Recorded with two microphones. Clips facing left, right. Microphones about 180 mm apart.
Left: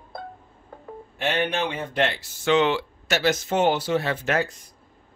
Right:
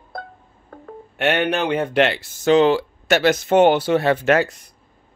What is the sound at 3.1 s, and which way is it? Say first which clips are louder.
Speech: right 6 dB; 60° right (ahead or behind).